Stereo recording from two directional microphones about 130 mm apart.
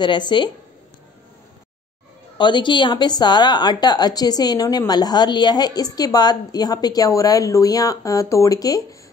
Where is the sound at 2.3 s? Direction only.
35° left (ahead or behind).